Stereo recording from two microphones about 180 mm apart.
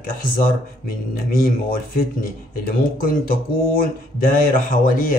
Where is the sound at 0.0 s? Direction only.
50° left (ahead or behind).